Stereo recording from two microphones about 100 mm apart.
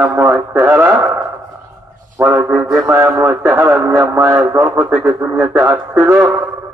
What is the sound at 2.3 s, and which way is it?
Speech, 20° right (ahead or behind).